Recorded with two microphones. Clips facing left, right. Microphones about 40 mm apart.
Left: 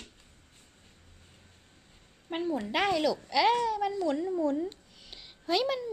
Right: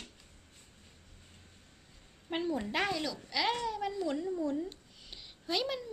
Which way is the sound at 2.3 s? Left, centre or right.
Centre.